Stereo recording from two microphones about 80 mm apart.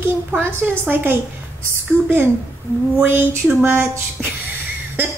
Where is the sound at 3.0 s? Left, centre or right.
Right.